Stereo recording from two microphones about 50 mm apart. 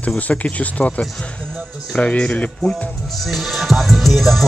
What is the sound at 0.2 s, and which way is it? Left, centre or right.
Speech, left.